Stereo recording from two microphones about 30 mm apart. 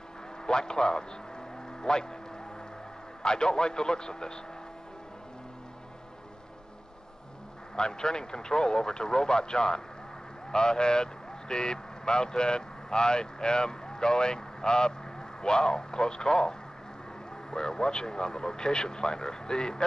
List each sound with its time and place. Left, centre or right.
0.5 s a man's voice: left
3.2 s speech: left
7.7 s speech: left